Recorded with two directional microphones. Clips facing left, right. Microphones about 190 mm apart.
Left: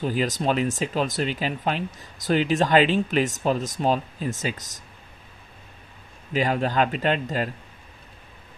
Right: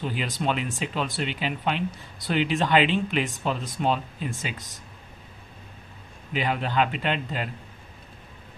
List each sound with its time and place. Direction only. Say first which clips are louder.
0.0 s speech: left 4 dB; 45° left (ahead or behind)
6.3 s speech: left 3 dB; 40° left (ahead or behind)